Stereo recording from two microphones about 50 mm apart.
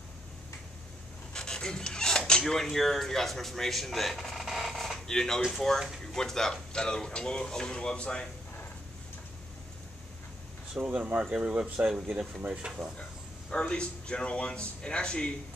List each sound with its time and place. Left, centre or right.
1.3 s pant: centre
2.4 s speech: centre
10.8 s speech: right
11.2 s speech: centre
13.5 s speech: centre